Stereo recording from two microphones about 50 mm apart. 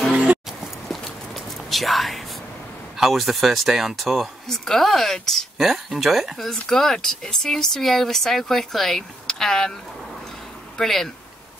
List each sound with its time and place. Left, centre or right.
0.1 s music: right
0.8 s whispering: centre
3.0 s speech: centre
5.6 s speech: centre
10.8 s speech: centre